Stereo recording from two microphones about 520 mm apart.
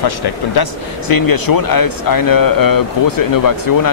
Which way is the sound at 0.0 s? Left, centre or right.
Left.